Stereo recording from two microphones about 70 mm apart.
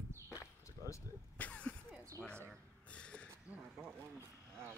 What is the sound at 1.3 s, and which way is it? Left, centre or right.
Cough, centre.